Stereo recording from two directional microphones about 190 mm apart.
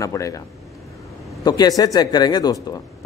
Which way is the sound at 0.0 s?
15° left (ahead or behind).